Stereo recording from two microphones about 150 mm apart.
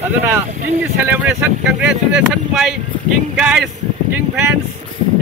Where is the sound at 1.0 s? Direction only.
15° right (ahead or behind).